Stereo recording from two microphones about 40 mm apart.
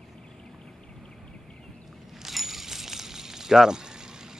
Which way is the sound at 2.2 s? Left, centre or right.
Centre.